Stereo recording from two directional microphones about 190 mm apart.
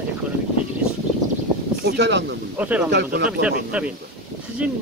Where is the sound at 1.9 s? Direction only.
65° right (ahead or behind).